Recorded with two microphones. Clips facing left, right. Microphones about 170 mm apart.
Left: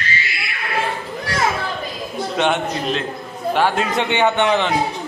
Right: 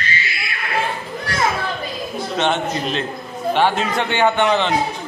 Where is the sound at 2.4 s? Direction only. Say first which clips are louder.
Even; 10° left (ahead or behind).